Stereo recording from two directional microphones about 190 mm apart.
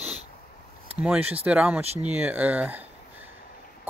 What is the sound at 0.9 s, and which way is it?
Speech, 5° right (ahead or behind).